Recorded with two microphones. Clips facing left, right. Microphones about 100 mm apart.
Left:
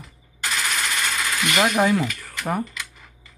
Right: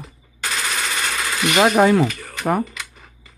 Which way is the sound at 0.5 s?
40° right (ahead or behind).